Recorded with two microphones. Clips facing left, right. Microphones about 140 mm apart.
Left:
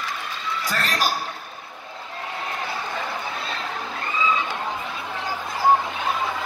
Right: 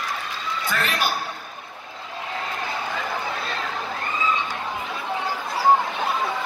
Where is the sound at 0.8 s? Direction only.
40° left (ahead or behind).